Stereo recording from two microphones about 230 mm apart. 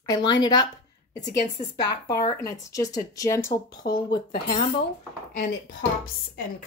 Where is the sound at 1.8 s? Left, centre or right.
Centre.